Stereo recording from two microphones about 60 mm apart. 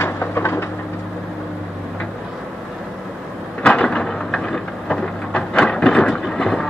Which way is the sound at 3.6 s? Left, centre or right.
Centre.